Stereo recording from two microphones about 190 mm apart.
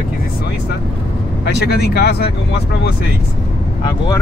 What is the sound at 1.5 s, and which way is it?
Speech, 60° left (ahead or behind).